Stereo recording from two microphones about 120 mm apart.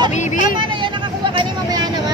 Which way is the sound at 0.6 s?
45° right (ahead or behind).